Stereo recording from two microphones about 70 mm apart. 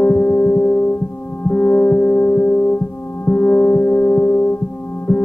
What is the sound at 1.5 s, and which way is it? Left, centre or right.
Music, left.